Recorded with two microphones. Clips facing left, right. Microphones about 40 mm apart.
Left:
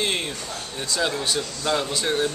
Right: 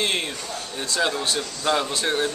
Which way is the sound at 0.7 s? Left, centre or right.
Centre.